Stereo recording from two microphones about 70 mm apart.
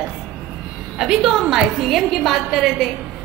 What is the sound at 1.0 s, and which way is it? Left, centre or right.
A woman's voice, centre.